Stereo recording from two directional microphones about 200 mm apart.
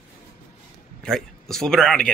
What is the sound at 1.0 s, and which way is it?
Speech, centre (ahead or behind).